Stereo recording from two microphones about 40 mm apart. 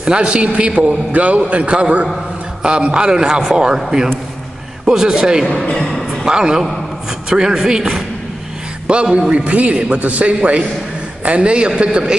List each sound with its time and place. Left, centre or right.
0.0 s a man's voice: right
4.8 s a man's voice: centre
5.6 s speech: centre
6.2 s a man's voice: centre
8.8 s a man's voice: right